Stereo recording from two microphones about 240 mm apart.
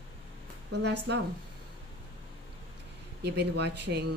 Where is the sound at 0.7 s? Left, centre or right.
Right.